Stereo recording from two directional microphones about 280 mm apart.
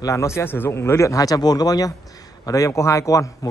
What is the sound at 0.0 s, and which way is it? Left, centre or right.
Speech, centre.